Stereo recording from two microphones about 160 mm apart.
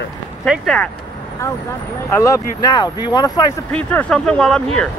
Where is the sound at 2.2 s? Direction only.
20° left (ahead or behind).